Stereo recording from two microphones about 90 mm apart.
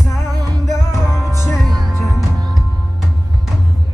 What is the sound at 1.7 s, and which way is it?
Music, 50° right (ahead or behind).